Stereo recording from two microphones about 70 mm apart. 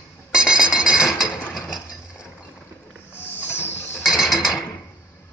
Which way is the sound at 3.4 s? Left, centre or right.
Left.